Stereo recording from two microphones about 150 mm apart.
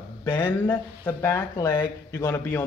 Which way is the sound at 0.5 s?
10° left (ahead or behind).